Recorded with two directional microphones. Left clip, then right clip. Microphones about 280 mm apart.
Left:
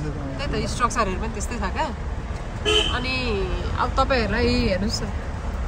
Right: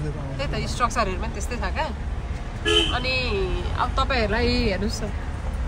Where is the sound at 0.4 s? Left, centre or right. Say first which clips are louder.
Left 1 dB; centre.